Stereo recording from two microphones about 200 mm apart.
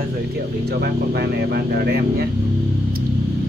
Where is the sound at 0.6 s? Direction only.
55° right (ahead or behind).